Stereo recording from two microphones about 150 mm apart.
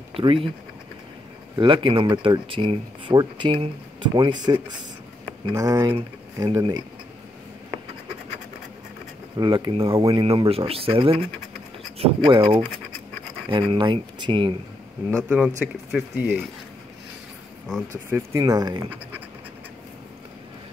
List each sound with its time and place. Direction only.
0.1 s speech: 35° right (ahead or behind)
1.6 s speech: 35° right (ahead or behind)
9.4 s speech: 35° right (ahead or behind)
9.9 s speech: 25° right (ahead or behind)
10.5 s speech: 40° right (ahead or behind)
15.2 s speech: 10° right (ahead or behind)
18.1 s speech: 25° right (ahead or behind)